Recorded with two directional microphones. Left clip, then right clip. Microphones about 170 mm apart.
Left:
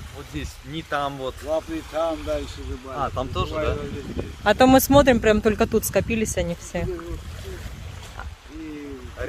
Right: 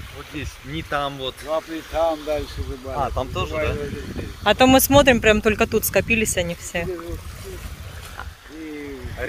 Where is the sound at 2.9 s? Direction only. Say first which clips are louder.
Right 2 dB; 90° left.